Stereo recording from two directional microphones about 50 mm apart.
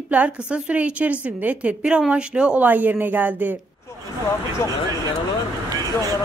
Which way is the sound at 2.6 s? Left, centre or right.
Right.